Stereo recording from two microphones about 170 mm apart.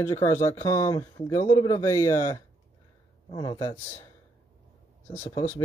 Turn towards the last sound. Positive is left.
turn(degrees=15)  # may be behind; listen again after turning